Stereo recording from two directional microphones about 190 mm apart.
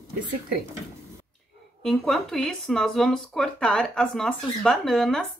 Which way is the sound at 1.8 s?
Centre (ahead or behind).